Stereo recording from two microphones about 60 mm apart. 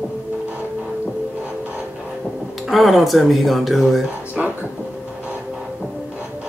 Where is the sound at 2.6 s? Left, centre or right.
Centre.